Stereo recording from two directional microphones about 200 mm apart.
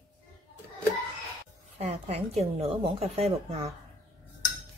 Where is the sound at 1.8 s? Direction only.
30° right (ahead or behind).